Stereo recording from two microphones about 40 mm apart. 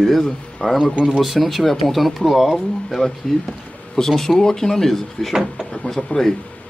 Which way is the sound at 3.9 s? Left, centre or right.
Centre.